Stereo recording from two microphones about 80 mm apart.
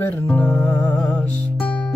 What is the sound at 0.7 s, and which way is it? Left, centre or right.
Music, left.